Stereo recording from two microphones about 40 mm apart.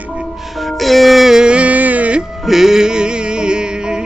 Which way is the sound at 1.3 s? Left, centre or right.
Right.